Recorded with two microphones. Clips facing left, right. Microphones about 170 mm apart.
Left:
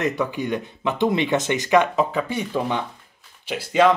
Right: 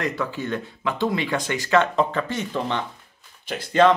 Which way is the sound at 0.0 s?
20° left (ahead or behind).